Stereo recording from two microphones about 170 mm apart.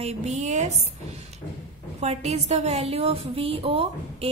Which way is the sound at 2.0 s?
40° right (ahead or behind).